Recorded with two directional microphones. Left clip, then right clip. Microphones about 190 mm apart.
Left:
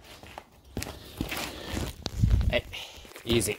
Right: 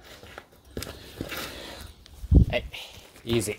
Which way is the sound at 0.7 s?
50° left (ahead or behind).